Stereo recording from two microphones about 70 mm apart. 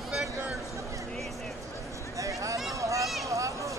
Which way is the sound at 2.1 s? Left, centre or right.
Right.